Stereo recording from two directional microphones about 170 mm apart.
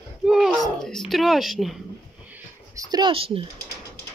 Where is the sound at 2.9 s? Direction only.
25° right (ahead or behind).